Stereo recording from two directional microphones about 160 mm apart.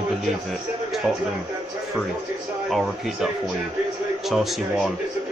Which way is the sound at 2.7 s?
Centre (ahead or behind).